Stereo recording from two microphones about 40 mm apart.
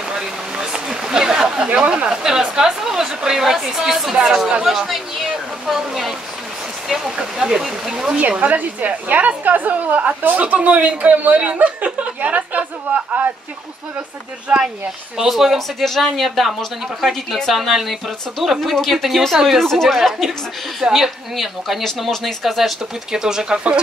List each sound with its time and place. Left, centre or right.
0.1 s a sound: centre
2.0 s a woman's voice: centre
7.3 s a woman's voice: centre
8.2 s speech: right
14.5 s speech: right
15.1 s a woman's voice: centre